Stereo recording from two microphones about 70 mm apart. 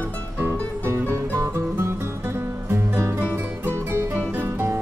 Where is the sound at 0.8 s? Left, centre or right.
Right.